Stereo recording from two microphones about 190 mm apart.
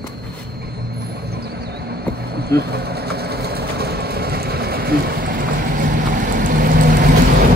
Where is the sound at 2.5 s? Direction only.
60° right (ahead or behind).